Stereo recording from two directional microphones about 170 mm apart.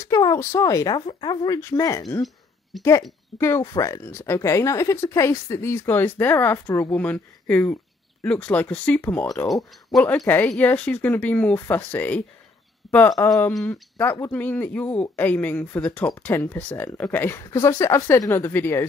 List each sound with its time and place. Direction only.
0.0 s speech: 20° left (ahead or behind)
12.8 s a sound: centre (ahead or behind)
13.5 s speech: 5° left (ahead or behind)